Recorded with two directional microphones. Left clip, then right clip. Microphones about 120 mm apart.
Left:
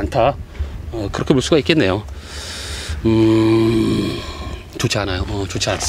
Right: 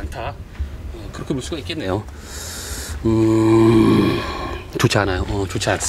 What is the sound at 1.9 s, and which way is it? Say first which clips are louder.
Speech: left 3 dB; 5° right (ahead or behind).